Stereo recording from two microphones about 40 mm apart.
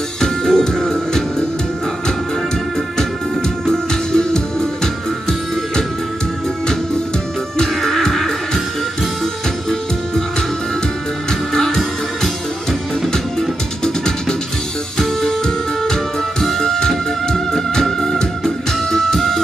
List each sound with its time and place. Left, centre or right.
0.2 s music: centre
3.6 s music: centre
7.5 s music: centre
11.5 s music: centre
15.0 s music: centre